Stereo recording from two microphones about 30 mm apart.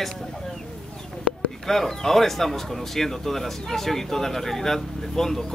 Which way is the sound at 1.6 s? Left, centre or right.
Centre.